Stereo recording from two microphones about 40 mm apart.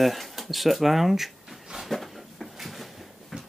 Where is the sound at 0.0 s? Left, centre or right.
Centre.